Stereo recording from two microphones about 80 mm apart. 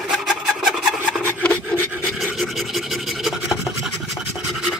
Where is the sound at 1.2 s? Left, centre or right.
Left.